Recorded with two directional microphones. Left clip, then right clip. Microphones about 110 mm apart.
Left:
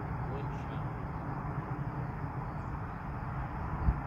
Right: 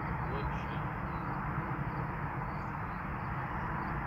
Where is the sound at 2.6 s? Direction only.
20° left (ahead or behind).